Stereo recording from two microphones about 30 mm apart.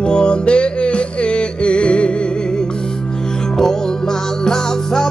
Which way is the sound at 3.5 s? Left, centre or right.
Centre.